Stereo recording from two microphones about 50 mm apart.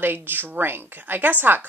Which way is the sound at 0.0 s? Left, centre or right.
Right.